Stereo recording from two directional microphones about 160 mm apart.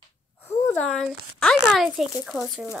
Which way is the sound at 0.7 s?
10° left (ahead or behind).